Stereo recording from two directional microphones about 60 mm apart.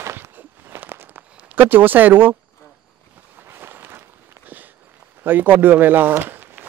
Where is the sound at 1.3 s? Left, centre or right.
Right.